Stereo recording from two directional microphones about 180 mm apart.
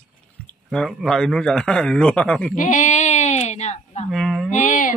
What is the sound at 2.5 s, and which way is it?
Speech, 45° left (ahead or behind).